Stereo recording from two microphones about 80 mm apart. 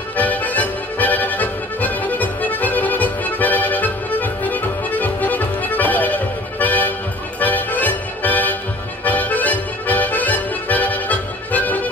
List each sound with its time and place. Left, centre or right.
0.2 s accordion: left
7.3 s music: left
9.0 s accordion: left